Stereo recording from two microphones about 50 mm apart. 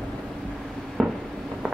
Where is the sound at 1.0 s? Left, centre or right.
Centre.